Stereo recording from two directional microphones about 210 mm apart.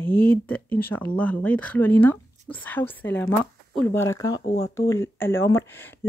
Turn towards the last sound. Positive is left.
turn(degrees=10)  # may be behind; listen again after turning